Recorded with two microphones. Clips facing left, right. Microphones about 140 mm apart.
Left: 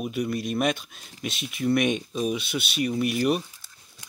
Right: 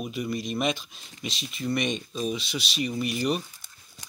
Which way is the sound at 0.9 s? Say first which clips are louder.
Left 3 dB; 55° left (ahead or behind).